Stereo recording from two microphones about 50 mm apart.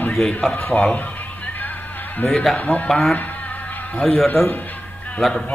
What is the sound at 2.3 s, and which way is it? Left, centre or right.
Speech, centre.